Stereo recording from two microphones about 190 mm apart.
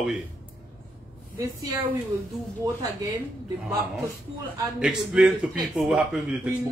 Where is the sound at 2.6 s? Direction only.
15° right (ahead or behind).